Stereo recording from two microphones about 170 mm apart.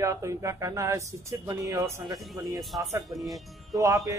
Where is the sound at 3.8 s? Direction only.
20° right (ahead or behind).